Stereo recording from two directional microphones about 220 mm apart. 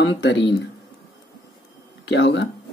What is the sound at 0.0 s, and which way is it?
Speech, 55° left (ahead or behind).